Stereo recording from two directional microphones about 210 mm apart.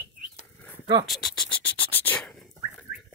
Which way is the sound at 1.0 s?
Centre (ahead or behind).